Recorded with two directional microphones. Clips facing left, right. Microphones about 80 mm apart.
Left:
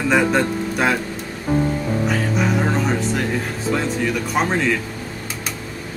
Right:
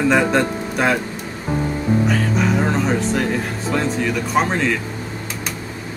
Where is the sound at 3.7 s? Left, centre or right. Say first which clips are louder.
Even; centre.